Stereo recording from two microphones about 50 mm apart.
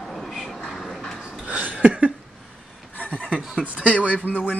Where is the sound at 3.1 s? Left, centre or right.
Right.